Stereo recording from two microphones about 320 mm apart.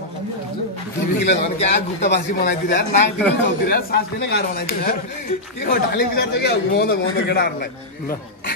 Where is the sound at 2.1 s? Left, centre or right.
Left.